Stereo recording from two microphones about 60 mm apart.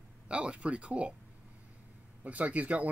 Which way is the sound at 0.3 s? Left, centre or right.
Centre.